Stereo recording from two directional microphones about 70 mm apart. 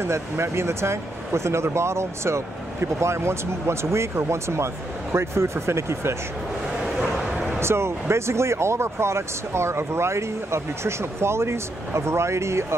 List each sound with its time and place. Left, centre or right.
0.0 s speech: right
7.0 s bow-wow: centre
7.6 s speech: right